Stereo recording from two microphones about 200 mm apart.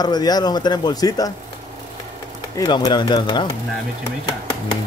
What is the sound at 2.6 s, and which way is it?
Speech, 20° left (ahead or behind).